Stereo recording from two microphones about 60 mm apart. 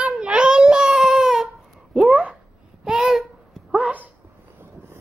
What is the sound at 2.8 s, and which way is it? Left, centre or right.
Babbling, centre.